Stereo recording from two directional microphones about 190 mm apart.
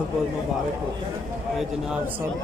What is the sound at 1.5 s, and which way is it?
Speech, 5° right (ahead or behind).